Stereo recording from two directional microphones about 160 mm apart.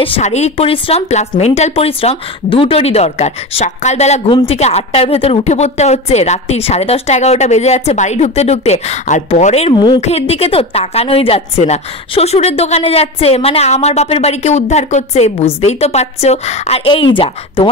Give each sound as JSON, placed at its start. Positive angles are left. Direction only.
{"t": 0.0, "sound": "a woman's voice", "side_deg": 40}